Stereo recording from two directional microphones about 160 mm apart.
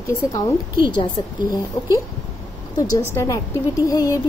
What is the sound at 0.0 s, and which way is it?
A woman's voice, 20° left (ahead or behind).